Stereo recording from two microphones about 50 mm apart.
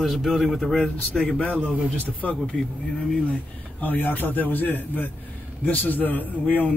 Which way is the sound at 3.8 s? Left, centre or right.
Left.